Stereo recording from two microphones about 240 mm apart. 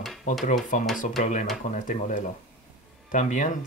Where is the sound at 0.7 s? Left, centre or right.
Left.